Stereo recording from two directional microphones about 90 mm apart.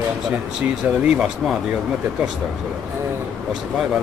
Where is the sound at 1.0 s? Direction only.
5° right (ahead or behind).